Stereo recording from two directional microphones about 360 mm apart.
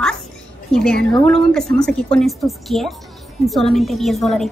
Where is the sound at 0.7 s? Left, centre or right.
Centre.